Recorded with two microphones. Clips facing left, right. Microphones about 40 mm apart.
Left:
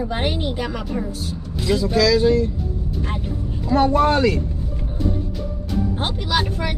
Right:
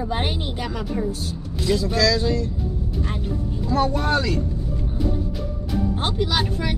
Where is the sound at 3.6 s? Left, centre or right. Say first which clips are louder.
Left 5 dB; left.